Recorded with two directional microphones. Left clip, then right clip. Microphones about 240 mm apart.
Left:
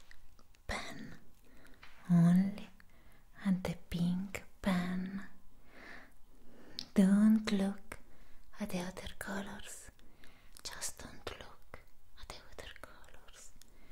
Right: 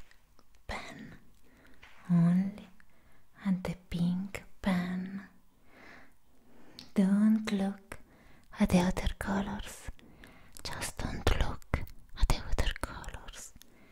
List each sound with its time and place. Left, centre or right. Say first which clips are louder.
0.7 s throat clearing: right 1 dB; centre
2.0 s whispering: right 1 dB; centre
6.7 s a sound: even; centre
8.5 s whispering: right 12 dB; right